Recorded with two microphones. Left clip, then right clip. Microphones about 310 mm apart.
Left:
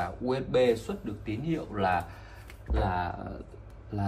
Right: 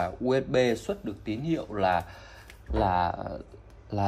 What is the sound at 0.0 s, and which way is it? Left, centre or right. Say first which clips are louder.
Speech: right 4 dB; right.